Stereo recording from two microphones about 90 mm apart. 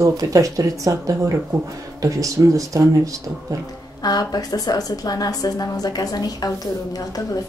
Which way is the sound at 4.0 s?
45° left (ahead or behind).